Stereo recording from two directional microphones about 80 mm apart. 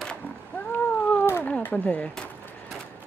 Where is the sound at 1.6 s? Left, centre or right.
Centre.